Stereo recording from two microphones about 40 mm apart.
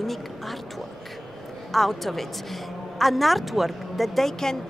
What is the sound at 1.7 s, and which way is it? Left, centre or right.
A woman's voice, centre.